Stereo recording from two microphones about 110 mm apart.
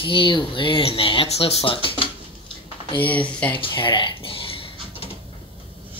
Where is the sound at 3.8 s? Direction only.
50° left (ahead or behind).